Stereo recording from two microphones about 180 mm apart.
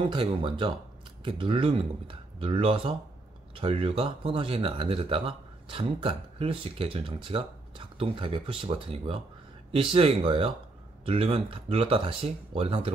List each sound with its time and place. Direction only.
0.0 s speech: 30° right (ahead or behind)